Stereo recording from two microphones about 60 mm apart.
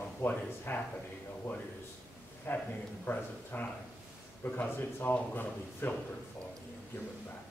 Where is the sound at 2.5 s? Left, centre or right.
Left.